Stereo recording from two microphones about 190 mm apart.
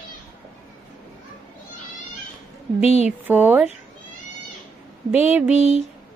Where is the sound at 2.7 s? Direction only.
35° left (ahead or behind).